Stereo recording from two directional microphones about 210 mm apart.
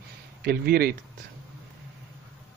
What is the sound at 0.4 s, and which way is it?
Speech, 45° right (ahead or behind).